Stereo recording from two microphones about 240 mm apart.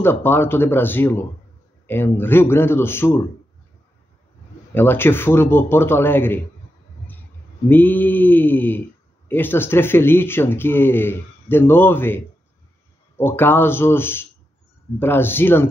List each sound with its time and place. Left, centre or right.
0.0 s speech: centre
4.7 s speech: centre
7.6 s speech: centre